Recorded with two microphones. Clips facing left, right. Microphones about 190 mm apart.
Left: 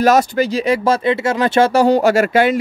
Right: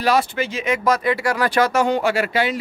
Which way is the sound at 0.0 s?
45° left (ahead or behind).